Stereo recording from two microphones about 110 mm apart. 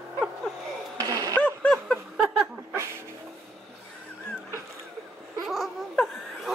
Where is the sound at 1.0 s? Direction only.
30° right (ahead or behind).